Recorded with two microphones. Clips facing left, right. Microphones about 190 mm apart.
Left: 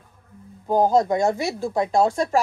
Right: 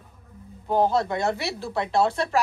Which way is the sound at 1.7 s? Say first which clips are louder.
Left 2 dB; 10° left (ahead or behind).